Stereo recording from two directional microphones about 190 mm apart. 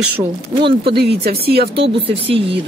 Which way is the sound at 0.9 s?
55° right (ahead or behind).